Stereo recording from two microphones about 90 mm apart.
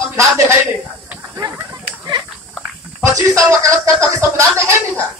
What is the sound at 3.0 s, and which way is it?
Speech, 35° right (ahead or behind).